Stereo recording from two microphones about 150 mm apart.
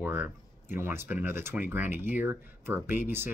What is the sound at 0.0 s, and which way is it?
Speech, 15° right (ahead or behind).